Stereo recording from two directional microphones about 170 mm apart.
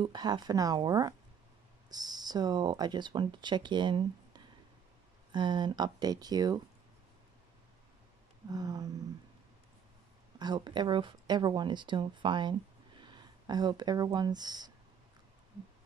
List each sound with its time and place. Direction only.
0.0 s speech: 25° right (ahead or behind)
8.5 s speech: 20° right (ahead or behind)
10.4 s speech: 25° right (ahead or behind)